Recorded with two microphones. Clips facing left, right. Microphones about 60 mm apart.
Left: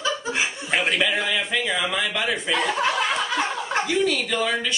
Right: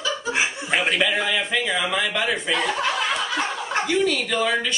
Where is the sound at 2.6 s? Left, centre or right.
Centre.